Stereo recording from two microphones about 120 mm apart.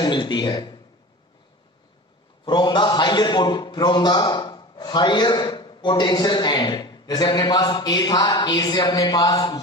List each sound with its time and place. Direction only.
0.0 s speech: 40° left (ahead or behind)
2.4 s a man's voice: 40° left (ahead or behind)